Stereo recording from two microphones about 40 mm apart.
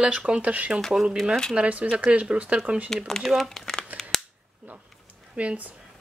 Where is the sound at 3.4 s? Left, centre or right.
Centre.